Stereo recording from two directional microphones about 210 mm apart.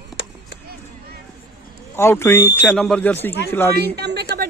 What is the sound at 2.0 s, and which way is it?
Speech, 10° left (ahead or behind).